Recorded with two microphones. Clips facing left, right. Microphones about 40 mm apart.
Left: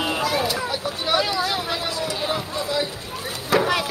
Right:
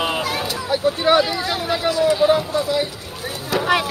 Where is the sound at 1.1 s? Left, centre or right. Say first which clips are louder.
Right 6 dB; right.